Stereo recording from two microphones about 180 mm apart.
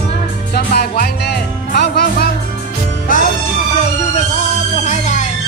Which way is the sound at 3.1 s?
50° left (ahead or behind).